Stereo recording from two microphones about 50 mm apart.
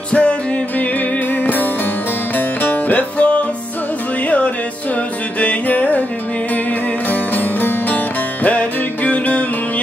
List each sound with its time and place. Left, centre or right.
0.1 s music: left
1.3 s music: left
5.4 s music: left
7.1 s music: left